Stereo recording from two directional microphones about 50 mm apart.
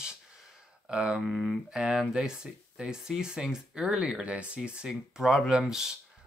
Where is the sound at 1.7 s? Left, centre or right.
Centre.